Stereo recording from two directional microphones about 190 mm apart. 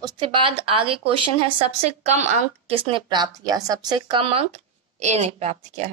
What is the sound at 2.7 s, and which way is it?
Speech, 25° right (ahead or behind).